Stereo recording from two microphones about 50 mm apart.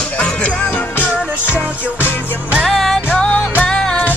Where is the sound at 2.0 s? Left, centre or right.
Left.